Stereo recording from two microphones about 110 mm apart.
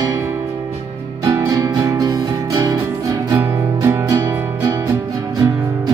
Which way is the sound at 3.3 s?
25° right (ahead or behind).